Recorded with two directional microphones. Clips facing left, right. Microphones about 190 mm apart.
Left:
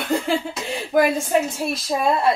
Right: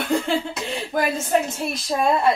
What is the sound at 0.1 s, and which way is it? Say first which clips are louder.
A woman's voice: left 1 dB; centre (ahead or behind).